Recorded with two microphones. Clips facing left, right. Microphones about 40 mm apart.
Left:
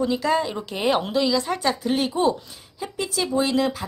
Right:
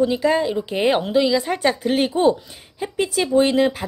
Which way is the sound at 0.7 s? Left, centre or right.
Right.